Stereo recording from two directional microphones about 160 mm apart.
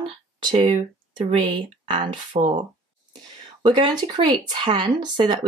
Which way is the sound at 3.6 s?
30° right (ahead or behind).